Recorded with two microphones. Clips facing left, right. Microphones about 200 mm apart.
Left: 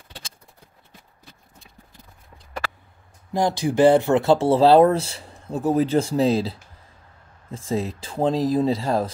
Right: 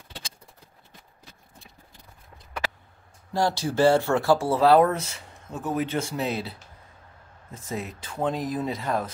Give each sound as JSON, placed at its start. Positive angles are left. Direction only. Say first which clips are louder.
{"t": 3.3, "sound": "speech", "louder": "left 4 dB", "side_deg": 15}
{"t": 7.5, "sound": "speech", "louder": "left 8 dB", "side_deg": 30}